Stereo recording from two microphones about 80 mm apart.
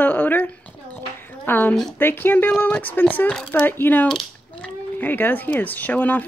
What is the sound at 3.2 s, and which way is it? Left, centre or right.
Speech, centre.